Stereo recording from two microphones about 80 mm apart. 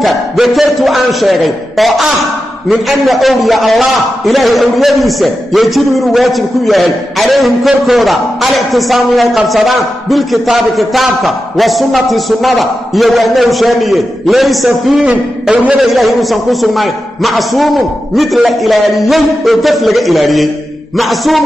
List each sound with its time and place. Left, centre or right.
0.0 s a man's voice: centre
15.5 s a man's voice: centre
15.8 s a man's voice: centre